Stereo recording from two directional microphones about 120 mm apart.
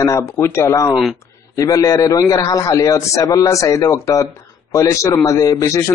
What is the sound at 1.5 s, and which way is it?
A man's voice, 30° left (ahead or behind).